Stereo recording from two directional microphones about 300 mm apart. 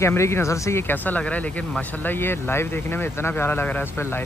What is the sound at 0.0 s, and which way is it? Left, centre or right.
Speech, centre.